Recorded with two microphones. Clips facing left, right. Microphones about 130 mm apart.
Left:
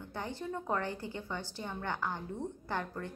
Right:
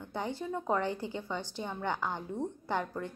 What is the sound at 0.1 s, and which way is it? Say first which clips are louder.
A woman's voice: right 4 dB; 15° right (ahead or behind).